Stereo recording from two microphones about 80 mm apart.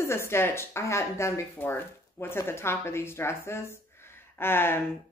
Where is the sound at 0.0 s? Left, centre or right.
Left.